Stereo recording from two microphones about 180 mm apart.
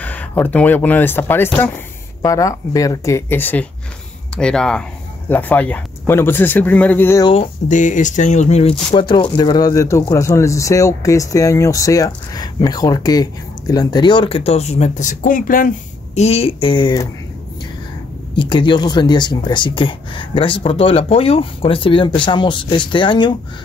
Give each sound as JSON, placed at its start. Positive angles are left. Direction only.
{"t": 0.0, "sound": "speech", "side_deg": 10}
{"t": 7.6, "sound": "speech", "side_deg": 45}
{"t": 8.9, "sound": "speech", "side_deg": 25}
{"t": 16.2, "sound": "speech", "side_deg": 35}
{"t": 18.3, "sound": "speech", "side_deg": 25}